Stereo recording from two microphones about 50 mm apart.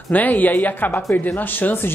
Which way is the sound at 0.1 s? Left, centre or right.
Left.